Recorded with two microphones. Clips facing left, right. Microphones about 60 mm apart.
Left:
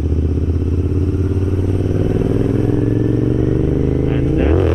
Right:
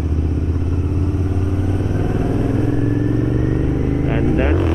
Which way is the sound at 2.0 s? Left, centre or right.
Right.